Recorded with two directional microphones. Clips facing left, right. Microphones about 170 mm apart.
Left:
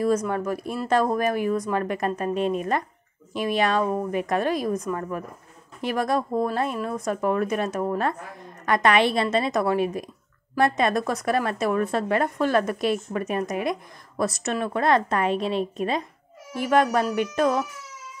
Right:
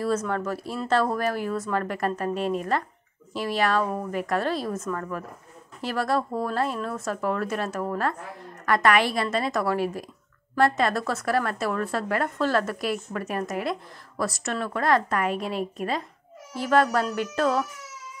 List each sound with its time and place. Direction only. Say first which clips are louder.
0.0 s a woman's voice: left 3 dB; 10° left (ahead or behind)